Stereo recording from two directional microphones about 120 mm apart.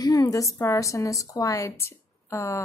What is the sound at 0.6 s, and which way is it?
A woman's voice, 25° left (ahead or behind).